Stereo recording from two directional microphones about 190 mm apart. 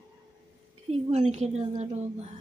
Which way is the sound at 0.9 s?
35° right (ahead or behind).